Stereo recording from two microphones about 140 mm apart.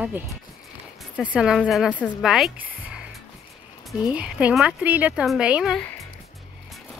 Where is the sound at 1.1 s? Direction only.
10° right (ahead or behind).